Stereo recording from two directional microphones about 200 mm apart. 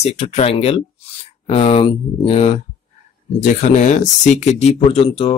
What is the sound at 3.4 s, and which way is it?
Speech, 40° left (ahead or behind).